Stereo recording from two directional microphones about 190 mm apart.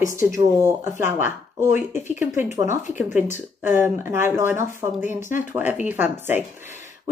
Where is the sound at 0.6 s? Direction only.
15° right (ahead or behind).